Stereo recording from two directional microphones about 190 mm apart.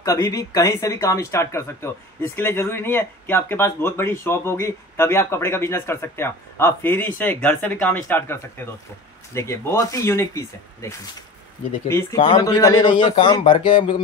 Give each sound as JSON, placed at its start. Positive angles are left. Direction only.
{"t": 0.0, "sound": "a man's voice", "side_deg": 20}